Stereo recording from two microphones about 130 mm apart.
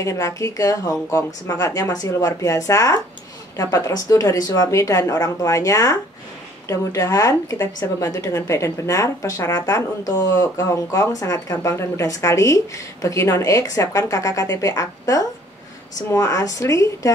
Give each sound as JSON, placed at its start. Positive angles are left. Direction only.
{"t": 0.0, "sound": "speech", "side_deg": 25}